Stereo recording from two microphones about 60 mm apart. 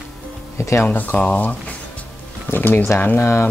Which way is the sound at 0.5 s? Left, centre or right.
Left.